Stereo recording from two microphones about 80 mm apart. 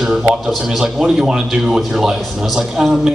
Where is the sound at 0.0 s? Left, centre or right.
Centre.